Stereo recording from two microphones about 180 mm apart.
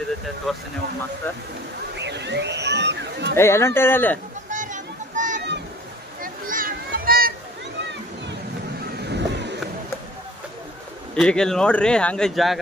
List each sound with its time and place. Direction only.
0.5 s speech: centre (ahead or behind)
2.0 s a sound: 70° right (ahead or behind)
3.3 s speech: 15° left (ahead or behind)
4.5 s a sound: 45° right (ahead or behind)
8.9 s vehicle: 65° right (ahead or behind)
11.1 s speech: 5° left (ahead or behind)